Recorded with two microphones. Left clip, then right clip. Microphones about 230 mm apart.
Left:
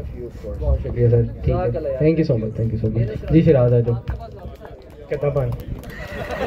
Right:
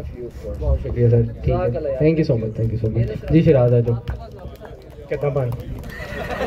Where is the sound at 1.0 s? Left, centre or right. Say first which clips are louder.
Even; right.